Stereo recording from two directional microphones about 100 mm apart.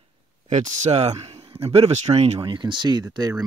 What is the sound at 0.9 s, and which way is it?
Speech, 90° right.